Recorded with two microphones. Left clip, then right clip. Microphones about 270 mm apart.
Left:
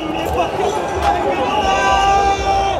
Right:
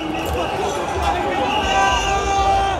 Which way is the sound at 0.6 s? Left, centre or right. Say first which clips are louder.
Left 4 dB; centre.